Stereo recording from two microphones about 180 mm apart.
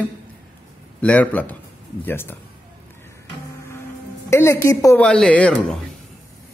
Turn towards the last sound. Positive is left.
turn(degrees=5)  # may be behind; listen again after turning